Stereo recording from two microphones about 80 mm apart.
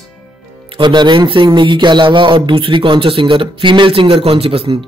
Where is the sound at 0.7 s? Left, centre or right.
Right.